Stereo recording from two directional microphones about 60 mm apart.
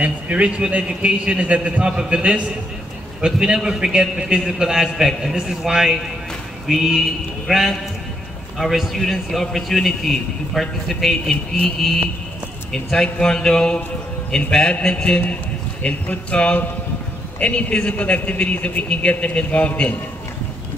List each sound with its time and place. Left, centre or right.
0.0 s a man's voice: right; by 15.1 s centre
15.8 s a man's voice: left